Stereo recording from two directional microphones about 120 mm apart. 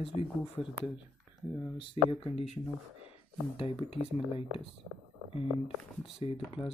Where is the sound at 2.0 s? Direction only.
50° left (ahead or behind).